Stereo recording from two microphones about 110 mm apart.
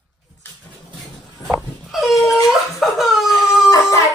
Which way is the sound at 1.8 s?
Centre (ahead or behind).